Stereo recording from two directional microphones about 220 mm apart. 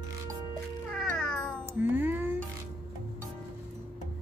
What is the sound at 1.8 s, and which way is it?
Music, 10° right (ahead or behind).